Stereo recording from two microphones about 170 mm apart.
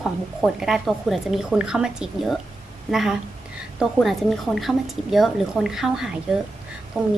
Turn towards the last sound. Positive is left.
turn(degrees=-5)  # may be behind; listen again after turning